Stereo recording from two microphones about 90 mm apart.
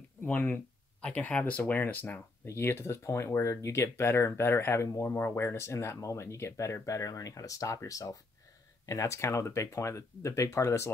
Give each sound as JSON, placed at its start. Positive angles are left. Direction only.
{"t": 0.2, "sound": "speech", "side_deg": 20}